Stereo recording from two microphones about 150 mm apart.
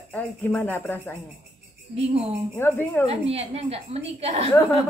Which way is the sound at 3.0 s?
40° right (ahead or behind).